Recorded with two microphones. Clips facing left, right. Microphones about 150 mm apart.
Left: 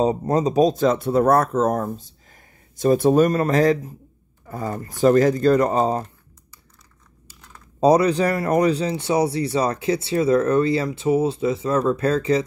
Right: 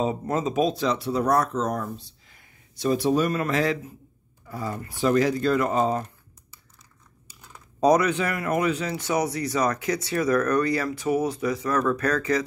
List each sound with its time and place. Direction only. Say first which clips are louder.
0.0 s speech: left 6 dB; 40° left (ahead or behind)
7.8 s speech: left 4 dB; 30° left (ahead or behind)